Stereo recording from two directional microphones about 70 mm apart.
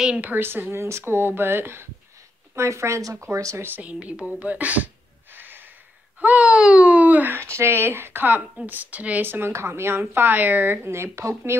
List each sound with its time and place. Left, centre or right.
0.2 s speech: right
3.8 s speech: centre
5.3 s snort: right
6.1 s speech: right
7.3 s speech: right